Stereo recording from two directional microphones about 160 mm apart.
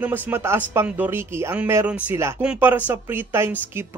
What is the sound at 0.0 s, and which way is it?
A man's voice, 15° right (ahead or behind).